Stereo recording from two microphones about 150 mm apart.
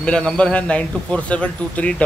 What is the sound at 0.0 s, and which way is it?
A man's voice, 5° left (ahead or behind).